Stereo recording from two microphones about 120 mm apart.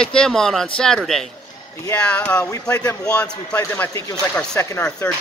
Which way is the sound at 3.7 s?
20° left (ahead or behind).